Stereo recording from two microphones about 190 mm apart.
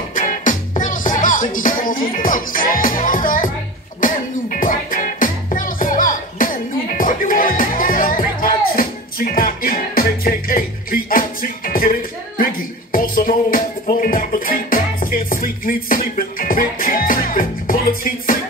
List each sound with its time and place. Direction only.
0.1 s music: 40° left (ahead or behind)